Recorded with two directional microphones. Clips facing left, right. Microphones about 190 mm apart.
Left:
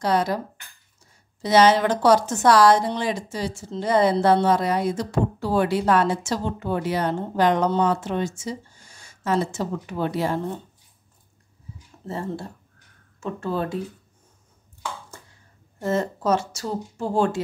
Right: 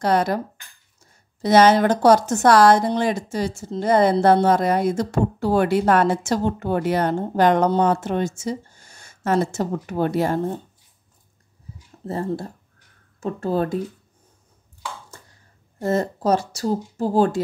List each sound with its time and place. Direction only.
0.0 s a woman's voice: 55° right (ahead or behind)
1.4 s a woman's voice: 50° right (ahead or behind)
12.1 s speech: 40° right (ahead or behind)
15.8 s speech: 40° right (ahead or behind)